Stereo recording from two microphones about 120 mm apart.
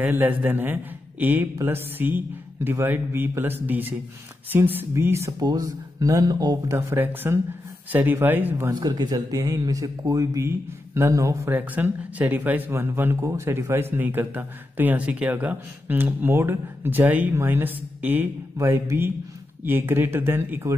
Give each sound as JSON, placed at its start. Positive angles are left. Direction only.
{"t": 0.0, "sound": "speech", "side_deg": -15}
{"t": 8.6, "sound": "speech", "side_deg": -30}